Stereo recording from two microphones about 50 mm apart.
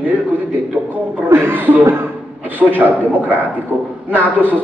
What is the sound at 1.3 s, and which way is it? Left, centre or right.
A man's voice, right.